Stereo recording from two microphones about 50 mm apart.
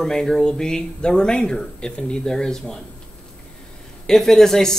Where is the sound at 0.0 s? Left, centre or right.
Centre.